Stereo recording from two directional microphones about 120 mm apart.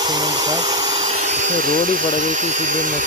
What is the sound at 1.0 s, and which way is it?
Speech, 70° right (ahead or behind).